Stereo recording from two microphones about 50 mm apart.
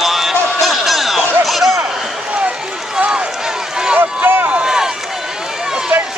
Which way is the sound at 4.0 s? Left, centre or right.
Right.